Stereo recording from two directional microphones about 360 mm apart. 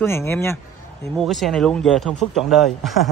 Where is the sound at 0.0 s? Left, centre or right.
Centre.